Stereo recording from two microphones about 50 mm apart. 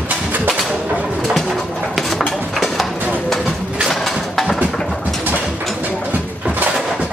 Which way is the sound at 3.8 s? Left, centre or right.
Centre.